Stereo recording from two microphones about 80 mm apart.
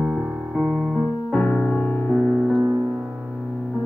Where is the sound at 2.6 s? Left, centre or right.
Right.